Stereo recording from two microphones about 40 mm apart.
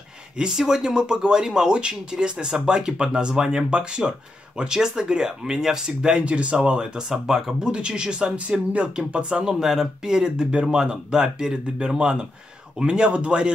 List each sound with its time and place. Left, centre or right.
0.4 s speech: centre
7.1 s speech: centre
9.4 s speech: centre